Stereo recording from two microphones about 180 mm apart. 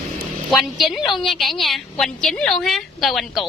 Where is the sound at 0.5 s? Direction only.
Centre (ahead or behind).